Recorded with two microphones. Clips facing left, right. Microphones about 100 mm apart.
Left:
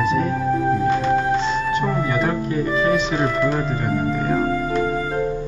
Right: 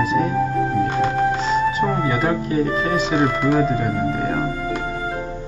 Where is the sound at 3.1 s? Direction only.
15° right (ahead or behind).